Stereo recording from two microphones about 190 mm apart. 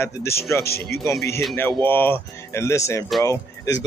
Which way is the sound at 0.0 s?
15° left (ahead or behind).